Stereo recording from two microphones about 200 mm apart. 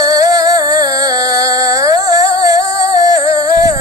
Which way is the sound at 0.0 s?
20° right (ahead or behind).